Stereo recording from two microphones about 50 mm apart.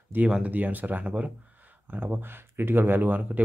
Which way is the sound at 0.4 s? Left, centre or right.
Right.